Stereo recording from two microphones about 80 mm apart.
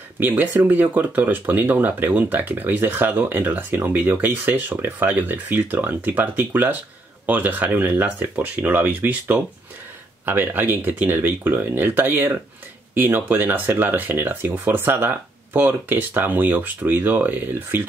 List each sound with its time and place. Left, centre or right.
0.2 s speech: right